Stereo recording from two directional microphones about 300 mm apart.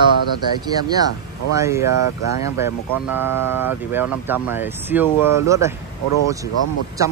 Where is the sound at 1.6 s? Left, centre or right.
Centre.